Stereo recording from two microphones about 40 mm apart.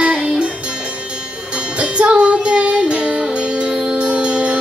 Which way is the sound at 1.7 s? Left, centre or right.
Right.